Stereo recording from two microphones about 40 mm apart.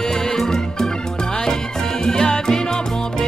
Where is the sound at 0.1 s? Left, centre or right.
Centre.